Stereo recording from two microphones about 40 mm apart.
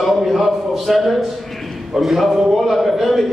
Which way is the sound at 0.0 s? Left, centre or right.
Centre.